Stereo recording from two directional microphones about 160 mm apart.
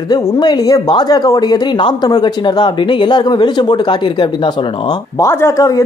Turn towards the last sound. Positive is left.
turn(degrees=20)  # may be behind; listen again after turning